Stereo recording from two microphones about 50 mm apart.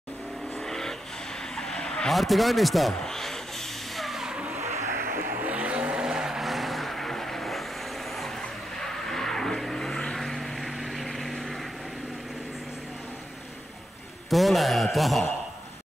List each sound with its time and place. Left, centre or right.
0.6 s vehicle: centre
4.2 s vehicle: centre
5.3 s vehicle: right; by 11.6 s centre
14.3 s a man's voice: centre